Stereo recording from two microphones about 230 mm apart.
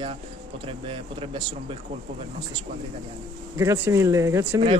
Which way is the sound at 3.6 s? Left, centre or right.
Centre.